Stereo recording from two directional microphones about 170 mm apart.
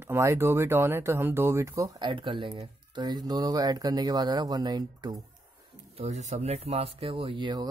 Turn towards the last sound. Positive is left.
turn(degrees=-25)  # may be behind; listen again after turning